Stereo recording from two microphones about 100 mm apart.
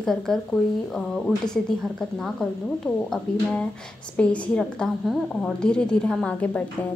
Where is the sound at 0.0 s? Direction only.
5° left (ahead or behind).